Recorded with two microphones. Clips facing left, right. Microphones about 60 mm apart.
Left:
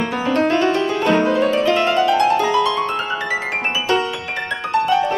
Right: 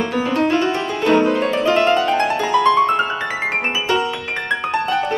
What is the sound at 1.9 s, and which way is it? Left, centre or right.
Music, right.